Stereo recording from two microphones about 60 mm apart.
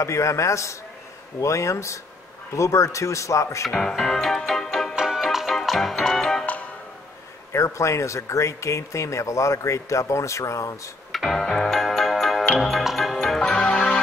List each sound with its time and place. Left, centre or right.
0.0 s speech: left
3.7 s music: centre
4.9 s music: centre
7.5 s speech: left
11.1 s music: centre